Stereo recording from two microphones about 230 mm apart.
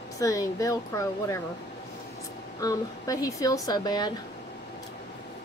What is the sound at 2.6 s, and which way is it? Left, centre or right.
A woman's voice, centre.